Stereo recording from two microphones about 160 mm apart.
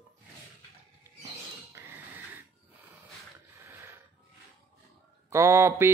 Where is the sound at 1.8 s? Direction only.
15° right (ahead or behind).